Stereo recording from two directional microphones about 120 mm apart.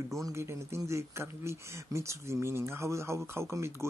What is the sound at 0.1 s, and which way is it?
Speech, 25° right (ahead or behind).